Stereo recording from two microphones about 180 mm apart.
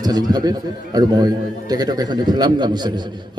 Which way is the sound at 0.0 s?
20° right (ahead or behind).